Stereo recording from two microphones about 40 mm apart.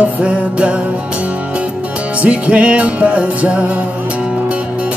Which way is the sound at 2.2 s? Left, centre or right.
Right.